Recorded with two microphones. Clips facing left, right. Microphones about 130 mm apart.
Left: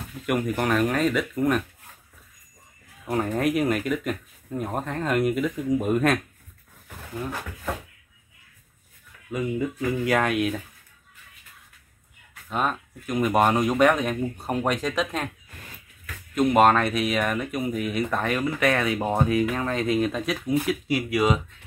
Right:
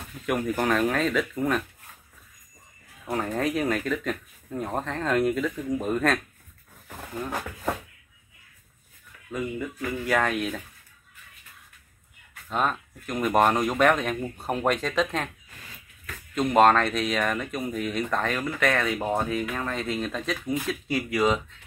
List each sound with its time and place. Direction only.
0.3 s speech: 5° left (ahead or behind)
3.1 s speech: 5° left (ahead or behind)
9.6 s speech: 15° left (ahead or behind)
12.4 s speech: 5° left (ahead or behind)
16.3 s speech: 5° left (ahead or behind)